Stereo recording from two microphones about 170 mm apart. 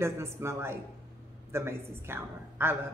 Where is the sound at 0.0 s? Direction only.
15° right (ahead or behind).